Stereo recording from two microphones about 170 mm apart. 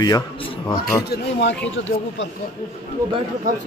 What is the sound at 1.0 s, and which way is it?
Speech, 80° left.